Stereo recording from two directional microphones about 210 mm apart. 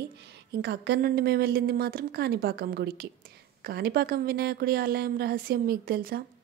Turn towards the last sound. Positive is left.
turn(degrees=-45)  # may be behind; listen again after turning